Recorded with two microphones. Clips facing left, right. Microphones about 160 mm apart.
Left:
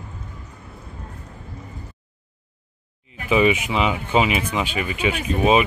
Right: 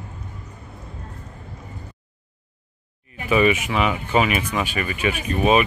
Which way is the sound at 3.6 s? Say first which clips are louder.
Even; 20° left (ahead or behind).